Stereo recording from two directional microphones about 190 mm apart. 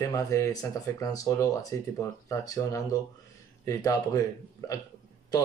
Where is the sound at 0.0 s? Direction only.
15° left (ahead or behind).